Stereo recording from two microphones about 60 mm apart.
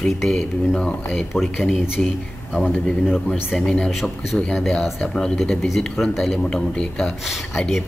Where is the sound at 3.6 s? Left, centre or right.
Centre.